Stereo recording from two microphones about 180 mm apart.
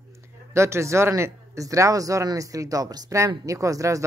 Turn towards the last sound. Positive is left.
turn(degrees=-20)  # may be behind; listen again after turning